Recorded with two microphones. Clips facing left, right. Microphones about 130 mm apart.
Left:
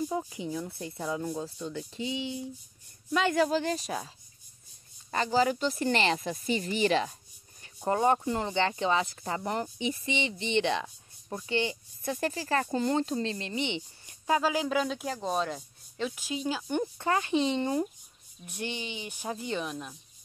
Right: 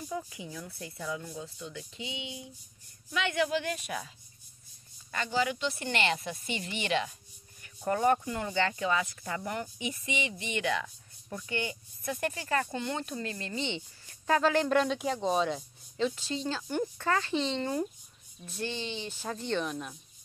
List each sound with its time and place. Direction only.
0.1 s speech: 30° left (ahead or behind)
5.1 s speech: 35° left (ahead or behind)
7.6 s speech: 25° left (ahead or behind); by 20.0 s 5° left (ahead or behind)